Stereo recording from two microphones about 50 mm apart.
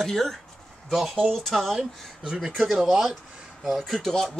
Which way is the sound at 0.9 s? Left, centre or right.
Centre.